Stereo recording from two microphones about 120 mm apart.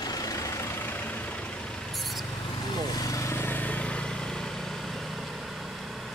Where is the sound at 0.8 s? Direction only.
15° left (ahead or behind).